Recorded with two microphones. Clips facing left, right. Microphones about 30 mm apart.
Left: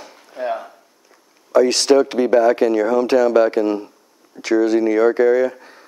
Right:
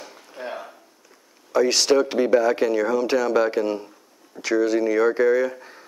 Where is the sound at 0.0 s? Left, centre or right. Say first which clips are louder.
Left 8 dB; centre.